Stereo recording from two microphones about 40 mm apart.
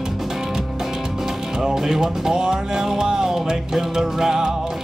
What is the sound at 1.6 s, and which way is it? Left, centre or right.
Speech, centre.